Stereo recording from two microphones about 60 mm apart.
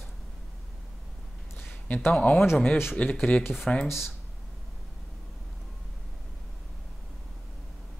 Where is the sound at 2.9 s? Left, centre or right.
Centre.